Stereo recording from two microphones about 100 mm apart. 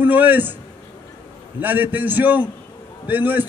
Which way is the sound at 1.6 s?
20° right (ahead or behind).